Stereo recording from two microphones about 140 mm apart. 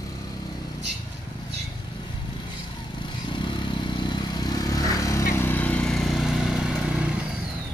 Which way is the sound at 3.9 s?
30° left (ahead or behind).